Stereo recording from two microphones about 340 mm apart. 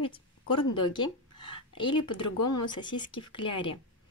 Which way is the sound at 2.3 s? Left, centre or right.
Left.